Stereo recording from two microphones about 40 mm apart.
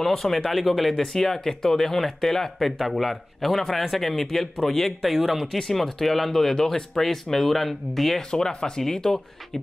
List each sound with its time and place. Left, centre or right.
0.0 s speech: centre
5.4 s speech: centre
8.3 s speech: centre